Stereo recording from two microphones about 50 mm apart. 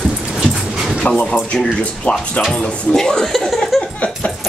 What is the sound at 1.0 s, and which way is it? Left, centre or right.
Speech, left.